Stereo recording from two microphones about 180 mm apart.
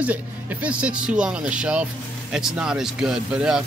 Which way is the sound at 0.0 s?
10° right (ahead or behind).